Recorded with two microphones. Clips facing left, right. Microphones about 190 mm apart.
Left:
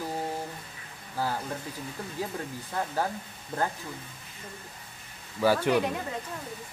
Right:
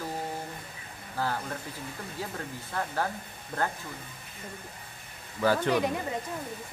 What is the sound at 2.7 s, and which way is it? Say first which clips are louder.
Speech: left 1 dB; 15° left (ahead or behind).